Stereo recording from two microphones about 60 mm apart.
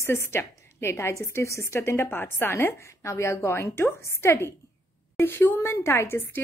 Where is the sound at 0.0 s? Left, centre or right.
Left.